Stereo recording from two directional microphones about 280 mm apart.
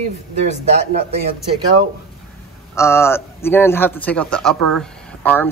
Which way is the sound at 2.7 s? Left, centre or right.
Centre.